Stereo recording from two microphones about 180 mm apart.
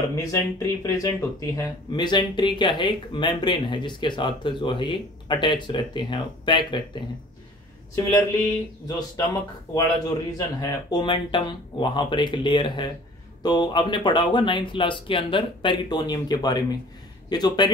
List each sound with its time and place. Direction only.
0.1 s speech: 20° left (ahead or behind)
8.8 s speech: 20° left (ahead or behind)